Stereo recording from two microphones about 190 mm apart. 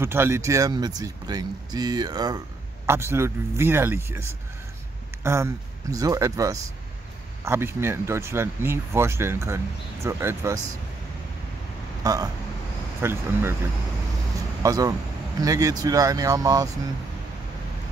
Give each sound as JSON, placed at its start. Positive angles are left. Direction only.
{"t": 0.0, "sound": "speech", "side_deg": -10}
{"t": 5.2, "sound": "speech", "side_deg": -15}
{"t": 12.0, "sound": "speech", "side_deg": -20}
{"t": 14.6, "sound": "speech", "side_deg": -20}